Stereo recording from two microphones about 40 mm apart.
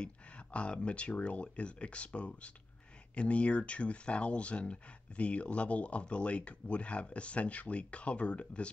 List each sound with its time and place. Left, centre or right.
0.0 s speech: left